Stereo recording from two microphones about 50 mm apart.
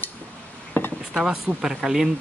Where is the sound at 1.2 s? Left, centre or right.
Centre.